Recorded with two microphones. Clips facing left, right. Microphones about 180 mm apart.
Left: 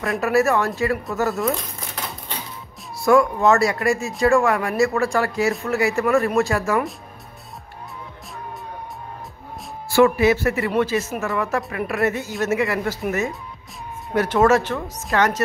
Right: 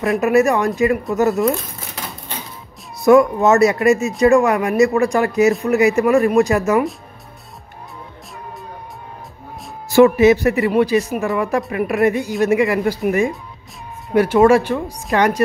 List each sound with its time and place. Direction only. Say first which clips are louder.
0.2 s speech: right 3 dB; 20° right (ahead or behind)
1.3 s speech: right 5 dB; centre (ahead or behind)
3.0 s speech: right 5 dB; 20° right (ahead or behind)
9.8 s speech: right 5 dB; 20° right (ahead or behind)